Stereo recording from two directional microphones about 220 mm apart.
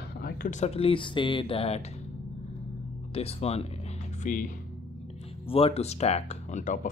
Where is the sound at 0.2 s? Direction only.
45° left (ahead or behind).